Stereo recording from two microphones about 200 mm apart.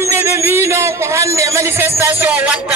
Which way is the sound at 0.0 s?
15° right (ahead or behind).